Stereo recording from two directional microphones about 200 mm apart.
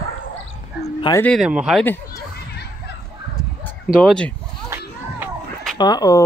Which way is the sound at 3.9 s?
Centre (ahead or behind).